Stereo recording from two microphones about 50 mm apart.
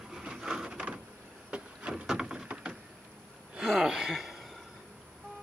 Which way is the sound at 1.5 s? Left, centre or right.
Right.